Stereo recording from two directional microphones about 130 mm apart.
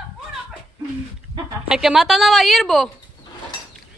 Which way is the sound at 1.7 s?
5° right (ahead or behind).